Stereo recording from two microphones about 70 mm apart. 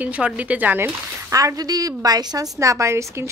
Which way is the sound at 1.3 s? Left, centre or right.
Right.